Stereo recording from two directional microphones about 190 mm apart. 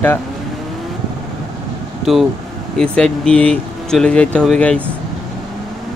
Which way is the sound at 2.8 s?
5° left (ahead or behind).